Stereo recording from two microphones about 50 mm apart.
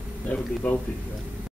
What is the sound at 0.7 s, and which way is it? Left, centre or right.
Speech, left.